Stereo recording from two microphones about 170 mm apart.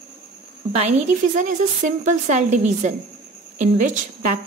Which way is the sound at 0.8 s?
45° right (ahead or behind).